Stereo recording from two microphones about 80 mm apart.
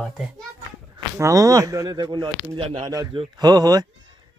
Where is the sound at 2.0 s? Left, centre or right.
Right.